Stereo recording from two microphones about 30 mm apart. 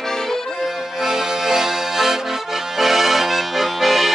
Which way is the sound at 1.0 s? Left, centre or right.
Centre.